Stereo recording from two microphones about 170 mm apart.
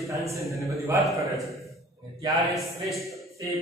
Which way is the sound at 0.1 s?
20° right (ahead or behind).